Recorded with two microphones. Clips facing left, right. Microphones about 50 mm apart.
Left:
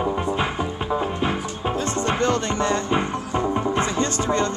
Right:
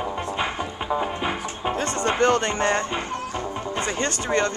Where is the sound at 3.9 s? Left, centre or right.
Right.